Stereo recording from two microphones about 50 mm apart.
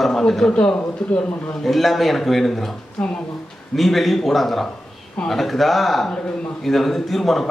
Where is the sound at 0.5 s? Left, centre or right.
Left.